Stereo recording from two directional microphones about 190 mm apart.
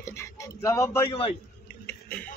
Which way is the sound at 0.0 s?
15° left (ahead or behind).